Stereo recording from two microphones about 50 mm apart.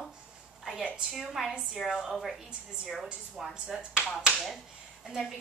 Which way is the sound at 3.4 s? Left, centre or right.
Centre.